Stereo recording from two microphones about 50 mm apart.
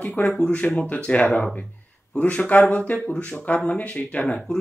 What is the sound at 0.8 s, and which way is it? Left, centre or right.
Speech, left.